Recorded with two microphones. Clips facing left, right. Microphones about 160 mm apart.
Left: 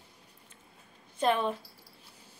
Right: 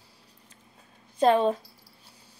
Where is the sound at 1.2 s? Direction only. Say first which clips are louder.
Right 7 dB; 35° right (ahead or behind).